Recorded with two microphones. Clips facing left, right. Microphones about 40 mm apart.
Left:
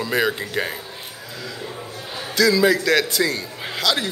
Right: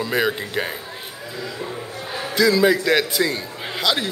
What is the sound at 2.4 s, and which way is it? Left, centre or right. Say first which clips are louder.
Speech: even; centre.